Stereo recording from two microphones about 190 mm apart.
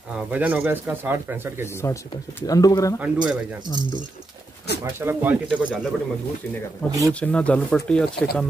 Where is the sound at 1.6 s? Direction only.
15° left (ahead or behind).